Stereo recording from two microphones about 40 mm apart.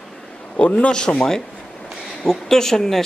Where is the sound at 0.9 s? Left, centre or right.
Left.